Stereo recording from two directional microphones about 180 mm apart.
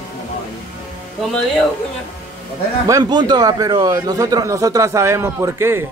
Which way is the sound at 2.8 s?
20° right (ahead or behind).